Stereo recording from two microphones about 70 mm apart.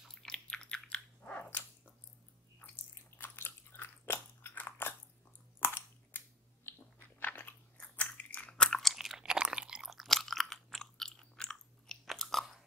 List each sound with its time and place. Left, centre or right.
0.1 s dog: centre
3.2 s biting: left
5.6 s chewing: left
7.2 s biting: left; by 9.8 s centre
9.8 s chewing: centre